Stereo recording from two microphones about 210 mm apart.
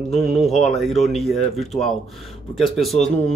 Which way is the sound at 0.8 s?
Centre (ahead or behind).